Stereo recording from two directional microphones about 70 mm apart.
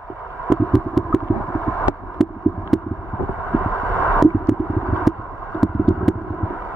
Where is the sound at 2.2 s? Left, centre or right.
Centre.